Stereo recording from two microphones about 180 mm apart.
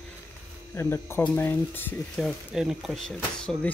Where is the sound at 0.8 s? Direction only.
15° left (ahead or behind).